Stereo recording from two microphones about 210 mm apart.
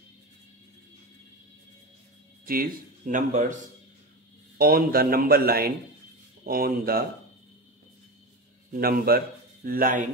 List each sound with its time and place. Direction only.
2.4 s speech: 40° right (ahead or behind)
4.6 s speech: 45° right (ahead or behind)
8.7 s speech: 45° right (ahead or behind)